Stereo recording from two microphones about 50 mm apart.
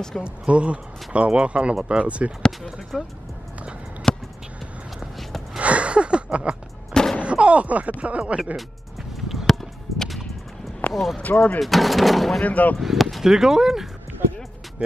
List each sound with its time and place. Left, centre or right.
0.2 s speech: right
2.9 s speech: centre
4.1 s a sound: centre
5.6 s a sound: right
6.9 s a sound: centre
7.2 s speech: right
9.5 s music: centre
10.9 s speech: centre
11.2 s speech: left
11.6 s speech: centre
12.4 s speech: left
12.8 s speech: centre
14.8 s speech: right